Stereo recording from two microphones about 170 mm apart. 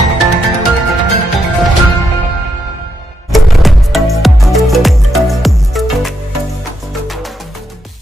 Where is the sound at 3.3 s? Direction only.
Centre (ahead or behind).